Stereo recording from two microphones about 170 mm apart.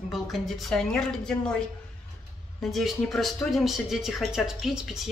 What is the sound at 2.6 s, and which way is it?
Speech, centre (ahead or behind).